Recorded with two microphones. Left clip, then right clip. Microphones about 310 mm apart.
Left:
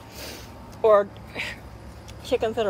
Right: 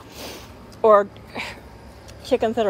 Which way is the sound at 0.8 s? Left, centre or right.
Centre.